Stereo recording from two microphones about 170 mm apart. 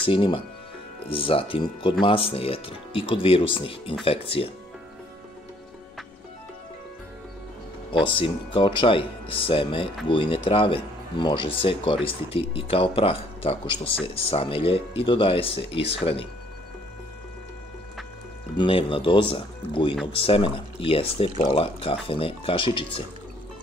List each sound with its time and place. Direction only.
0.0 s speech: 30° left (ahead or behind)
8.0 s speech: 30° left (ahead or behind)
18.6 s speech: 30° left (ahead or behind)